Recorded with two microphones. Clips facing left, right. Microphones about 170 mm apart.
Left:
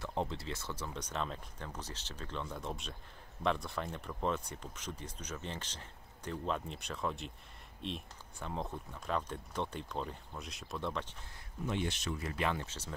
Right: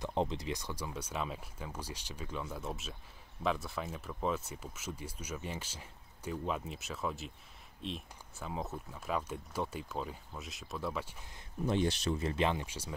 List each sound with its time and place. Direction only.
0.0 s speech: 20° right (ahead or behind)
11.6 s speech: 35° right (ahead or behind); by 12.9 s 10° right (ahead or behind)